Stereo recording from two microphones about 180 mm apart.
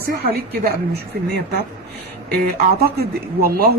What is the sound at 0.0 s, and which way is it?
Speech, 60° right (ahead or behind).